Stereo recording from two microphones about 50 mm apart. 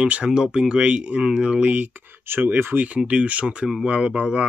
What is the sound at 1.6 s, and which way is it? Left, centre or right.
Speech, right.